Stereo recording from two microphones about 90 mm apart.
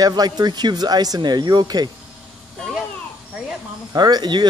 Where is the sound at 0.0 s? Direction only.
45° right (ahead or behind).